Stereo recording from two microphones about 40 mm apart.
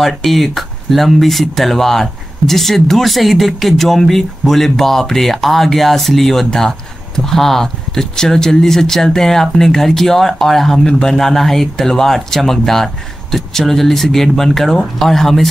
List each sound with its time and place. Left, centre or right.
0.0 s speech: centre
10.9 s speech: centre
11.1 s speech: centre